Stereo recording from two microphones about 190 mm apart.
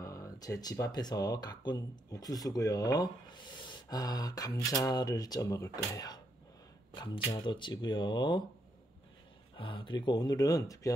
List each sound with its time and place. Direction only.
0.0 s speech: 15° left (ahead or behind)
7.3 s speech: 25° left (ahead or behind)
9.6 s speech: 25° left (ahead or behind)